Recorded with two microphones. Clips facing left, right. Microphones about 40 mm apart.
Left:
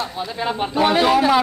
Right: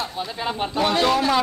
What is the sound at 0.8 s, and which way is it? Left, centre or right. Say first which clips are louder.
Speech: left 4 dB; centre.